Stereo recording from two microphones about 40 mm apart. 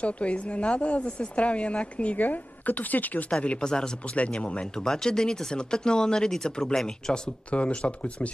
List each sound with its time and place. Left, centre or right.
0.0 s speech: left
2.1 s a woman's voice: left
3.3 s speech: left
4.2 s speech: left
4.7 s speech: centre
7.5 s speech: left